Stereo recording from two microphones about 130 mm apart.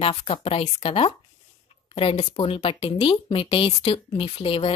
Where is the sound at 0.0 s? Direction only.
45° left (ahead or behind).